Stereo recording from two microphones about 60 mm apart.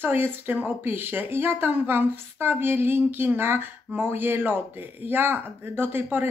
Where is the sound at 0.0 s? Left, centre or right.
Right.